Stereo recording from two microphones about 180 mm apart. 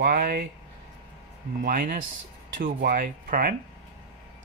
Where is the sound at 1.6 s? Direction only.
55° right (ahead or behind).